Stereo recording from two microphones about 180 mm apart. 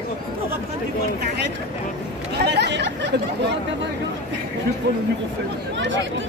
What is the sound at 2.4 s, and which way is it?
Speech, 70° right (ahead or behind).